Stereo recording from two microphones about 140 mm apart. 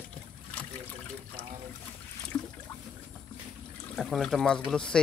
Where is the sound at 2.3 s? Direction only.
25° left (ahead or behind).